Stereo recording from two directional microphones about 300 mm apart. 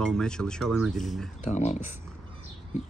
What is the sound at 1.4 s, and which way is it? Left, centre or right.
Speech, left.